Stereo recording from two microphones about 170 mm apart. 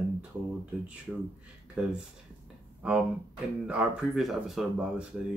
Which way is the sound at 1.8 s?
5° right (ahead or behind).